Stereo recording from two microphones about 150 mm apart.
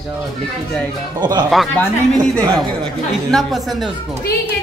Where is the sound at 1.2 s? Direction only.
25° right (ahead or behind).